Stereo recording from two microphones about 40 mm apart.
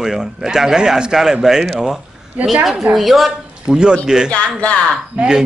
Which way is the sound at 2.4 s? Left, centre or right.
Right.